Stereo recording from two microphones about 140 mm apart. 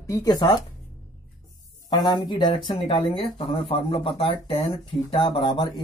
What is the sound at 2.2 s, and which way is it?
Speech, 35° left (ahead or behind).